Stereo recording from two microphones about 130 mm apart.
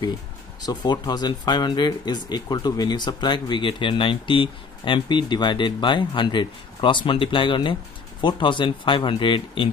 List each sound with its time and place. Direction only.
0.6 s speech: 30° left (ahead or behind)